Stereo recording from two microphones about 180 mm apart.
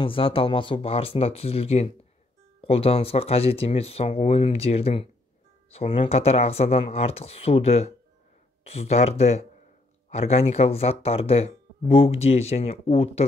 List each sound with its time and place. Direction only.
0.0 s speech: 30° left (ahead or behind)